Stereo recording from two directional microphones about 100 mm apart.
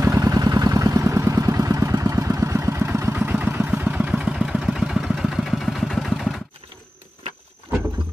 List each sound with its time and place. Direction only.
0.0 s vehicle: 30° right (ahead or behind); by 6.4 s centre (ahead or behind)